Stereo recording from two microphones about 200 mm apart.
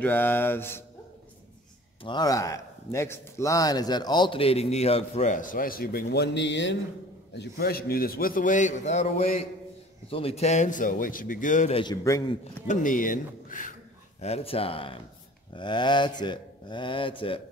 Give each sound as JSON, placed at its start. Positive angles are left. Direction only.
{"t": 0.0, "sound": "mantra", "side_deg": 10}
{"t": 2.0, "sound": "a man's voice", "side_deg": 20}
{"t": 7.3, "sound": "a man's voice", "side_deg": 50}
{"t": 11.8, "sound": "mantra", "side_deg": 15}
{"t": 12.6, "sound": "speech", "side_deg": 40}
{"t": 14.2, "sound": "a man's voice", "side_deg": 30}